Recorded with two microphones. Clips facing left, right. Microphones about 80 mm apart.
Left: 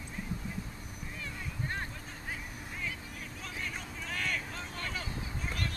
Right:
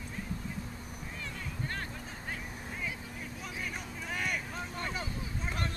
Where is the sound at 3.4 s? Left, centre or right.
Centre.